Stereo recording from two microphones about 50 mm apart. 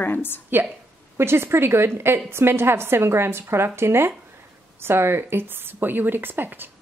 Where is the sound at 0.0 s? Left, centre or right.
Left.